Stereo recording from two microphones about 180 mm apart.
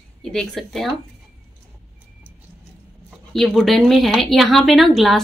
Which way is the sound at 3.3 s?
Centre (ahead or behind).